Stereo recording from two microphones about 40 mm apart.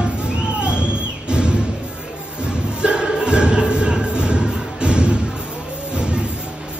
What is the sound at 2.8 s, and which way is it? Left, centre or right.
Music, right.